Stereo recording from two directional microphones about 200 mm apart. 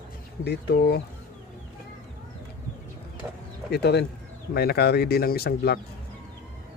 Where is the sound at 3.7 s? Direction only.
55° left (ahead or behind).